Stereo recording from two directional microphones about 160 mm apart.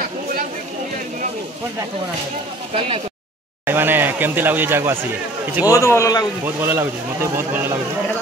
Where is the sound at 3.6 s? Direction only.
15° right (ahead or behind).